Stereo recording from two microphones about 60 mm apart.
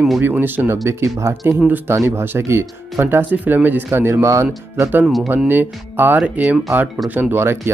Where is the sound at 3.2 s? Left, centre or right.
Right.